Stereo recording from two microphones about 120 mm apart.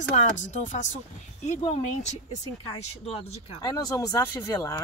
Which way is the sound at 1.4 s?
65° left (ahead or behind).